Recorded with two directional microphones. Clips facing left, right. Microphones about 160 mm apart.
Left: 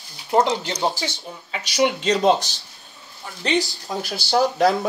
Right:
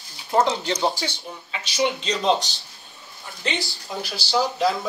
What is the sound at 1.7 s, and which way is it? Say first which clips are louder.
Speech: left 4 dB; 55° left (ahead or behind).